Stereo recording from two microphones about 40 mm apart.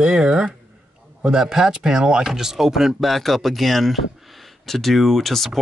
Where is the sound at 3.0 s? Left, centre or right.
Centre.